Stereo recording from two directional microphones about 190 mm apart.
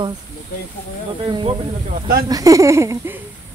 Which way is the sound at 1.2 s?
25° right (ahead or behind).